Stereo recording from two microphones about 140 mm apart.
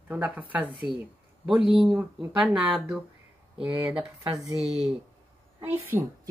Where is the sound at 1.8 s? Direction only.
5° right (ahead or behind).